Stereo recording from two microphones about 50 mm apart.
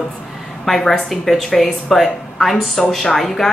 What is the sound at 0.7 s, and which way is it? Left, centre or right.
A woman's voice, centre.